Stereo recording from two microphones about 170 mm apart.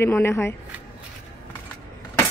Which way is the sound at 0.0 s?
15° left (ahead or behind).